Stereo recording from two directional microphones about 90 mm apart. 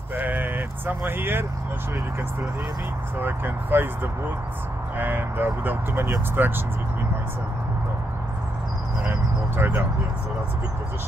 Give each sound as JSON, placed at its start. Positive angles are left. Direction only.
{"t": 0.1, "sound": "speech", "side_deg": -20}
{"t": 3.2, "sound": "speech", "side_deg": -25}
{"t": 9.6, "sound": "speech", "side_deg": -25}